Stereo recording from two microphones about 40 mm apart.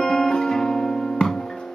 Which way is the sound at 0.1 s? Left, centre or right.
Centre.